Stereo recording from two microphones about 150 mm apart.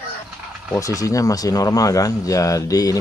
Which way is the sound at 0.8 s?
20° left (ahead or behind).